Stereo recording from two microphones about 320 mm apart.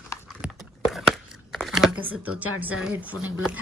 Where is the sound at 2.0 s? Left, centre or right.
Right.